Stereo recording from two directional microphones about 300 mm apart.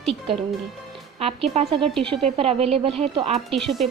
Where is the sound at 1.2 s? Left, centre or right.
Centre.